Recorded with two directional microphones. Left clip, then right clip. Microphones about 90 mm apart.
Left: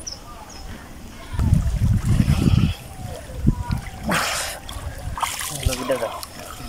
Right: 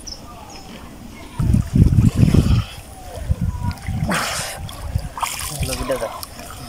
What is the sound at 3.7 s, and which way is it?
Dog, centre (ahead or behind).